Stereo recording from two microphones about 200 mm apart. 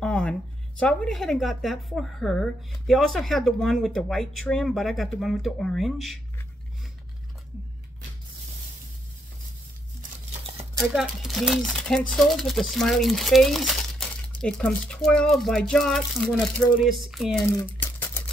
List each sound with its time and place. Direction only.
0.0 s speech: 5° left (ahead or behind)
10.9 s speech: centre (ahead or behind)
17.5 s typing: 10° left (ahead or behind)